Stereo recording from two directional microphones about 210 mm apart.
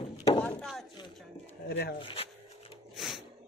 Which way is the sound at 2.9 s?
Centre (ahead or behind).